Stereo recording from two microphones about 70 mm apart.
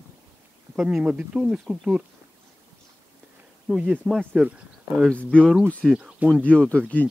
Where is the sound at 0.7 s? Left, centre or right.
Centre.